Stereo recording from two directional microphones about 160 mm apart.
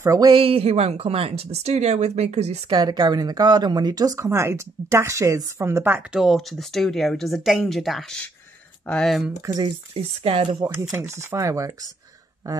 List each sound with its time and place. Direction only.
0.0 s speech: 25° right (ahead or behind); by 2.7 s 40° right (ahead or behind)
2.7 s speech: 25° right (ahead or behind)
6.1 s speech: centre (ahead or behind)
9.4 s speech: 25° right (ahead or behind)
9.9 s speech: 35° right (ahead or behind)
10.7 s speech: 15° right (ahead or behind)